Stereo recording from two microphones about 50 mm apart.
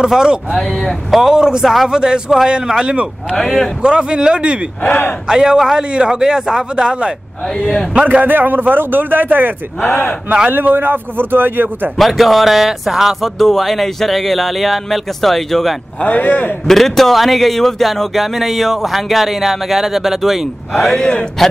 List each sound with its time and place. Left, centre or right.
0.0 s a man's voice: centre
0.7 s a man's voice: centre
4.8 s a man's voice: left
5.3 s a man's voice: centre
7.9 s a man's voice: right
8.3 s a man's voice: right
9.8 s a man's voice: left
10.5 s a man's voice: right
12.0 s speech: centre
16.0 s a man's voice: left
16.6 s speech: centre
20.7 s speech: centre